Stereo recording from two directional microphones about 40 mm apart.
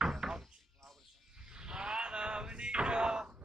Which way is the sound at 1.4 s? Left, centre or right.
Centre.